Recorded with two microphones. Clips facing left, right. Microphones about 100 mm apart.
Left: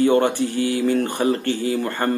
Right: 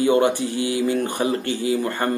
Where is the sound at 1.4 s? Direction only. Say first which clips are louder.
Even; 45° left (ahead or behind).